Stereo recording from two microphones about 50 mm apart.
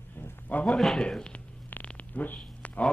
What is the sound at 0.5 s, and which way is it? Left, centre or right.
Speech, left.